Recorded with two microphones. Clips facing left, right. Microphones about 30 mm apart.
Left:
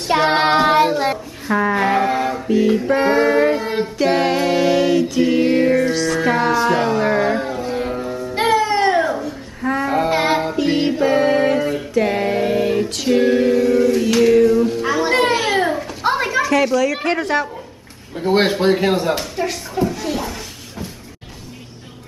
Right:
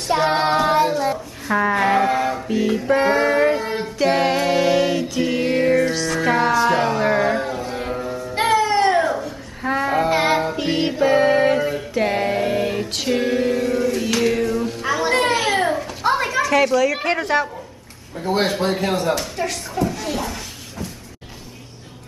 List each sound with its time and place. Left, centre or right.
0.3 s child singing: left
0.9 s a sound: left
1.5 s music: centre
9.6 s a sound: centre
9.8 s child singing: centre
10.7 s music: centre
18.3 s speech: left; by 20.3 s centre